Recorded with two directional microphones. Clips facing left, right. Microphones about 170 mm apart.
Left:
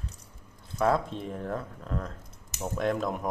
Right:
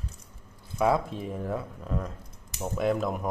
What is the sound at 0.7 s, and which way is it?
Speech, 10° right (ahead or behind).